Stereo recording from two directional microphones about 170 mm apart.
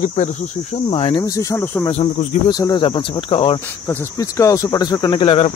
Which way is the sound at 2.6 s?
30° left (ahead or behind).